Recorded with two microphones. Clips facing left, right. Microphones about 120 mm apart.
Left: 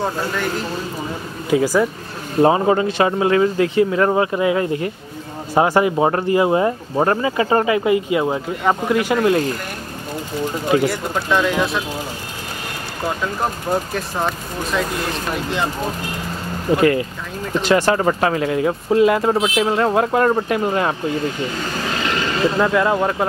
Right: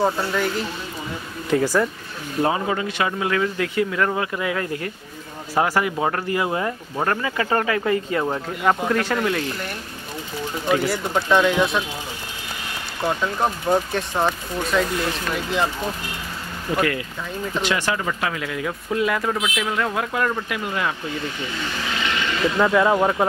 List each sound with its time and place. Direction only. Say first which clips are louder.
0.0 s speech: right 1 dB; centre (ahead or behind)
2.4 s speech: left 8 dB; 35° left (ahead or behind); by 9.2 s 10° left (ahead or behind)
9.2 s speech: left 7 dB; 40° left (ahead or behind)
10.9 s speech: even; centre (ahead or behind)
13.4 s speech: right 2 dB; centre (ahead or behind)
16.7 s speech: left 7 dB; 30° left (ahead or behind)
22.6 s speech: right 2 dB; centre (ahead or behind)